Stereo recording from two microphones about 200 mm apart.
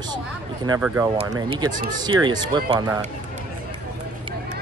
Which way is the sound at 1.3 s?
20° right (ahead or behind).